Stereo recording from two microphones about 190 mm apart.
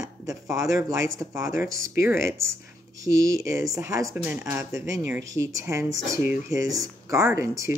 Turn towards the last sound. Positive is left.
turn(degrees=-15)  # may be behind; listen again after turning